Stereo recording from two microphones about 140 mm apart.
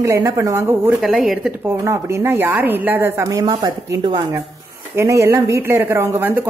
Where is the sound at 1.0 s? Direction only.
Centre (ahead or behind).